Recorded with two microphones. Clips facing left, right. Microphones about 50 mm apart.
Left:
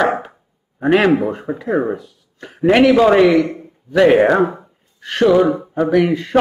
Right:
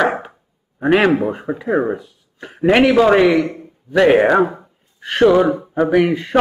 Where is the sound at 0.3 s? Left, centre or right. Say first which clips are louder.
Even; centre.